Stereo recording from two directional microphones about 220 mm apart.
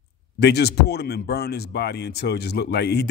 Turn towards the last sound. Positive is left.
turn(degrees=50)  # may be behind; listen again after turning